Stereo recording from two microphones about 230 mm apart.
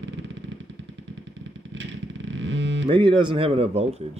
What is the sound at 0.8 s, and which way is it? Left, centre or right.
Vehicle, right.